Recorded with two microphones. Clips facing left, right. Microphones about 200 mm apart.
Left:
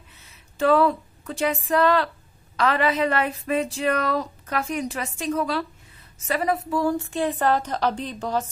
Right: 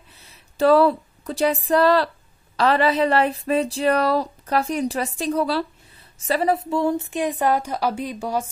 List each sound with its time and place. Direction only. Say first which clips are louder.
0.6 s a woman's voice: right 3 dB; 35° right (ahead or behind); by 8.5 s 10° right (ahead or behind)